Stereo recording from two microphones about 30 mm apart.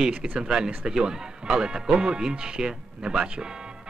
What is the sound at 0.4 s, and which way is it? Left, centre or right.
Speech, right.